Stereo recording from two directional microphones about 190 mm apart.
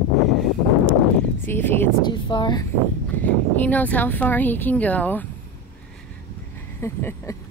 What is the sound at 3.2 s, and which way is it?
Speech, 10° left (ahead or behind).